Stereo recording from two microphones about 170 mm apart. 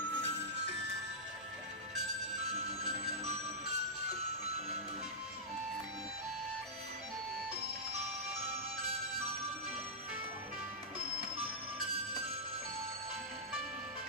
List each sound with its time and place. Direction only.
2.8 s music: 40° right (ahead or behind)